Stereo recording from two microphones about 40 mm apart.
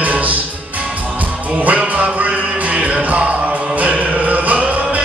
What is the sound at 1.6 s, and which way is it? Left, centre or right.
Music, right.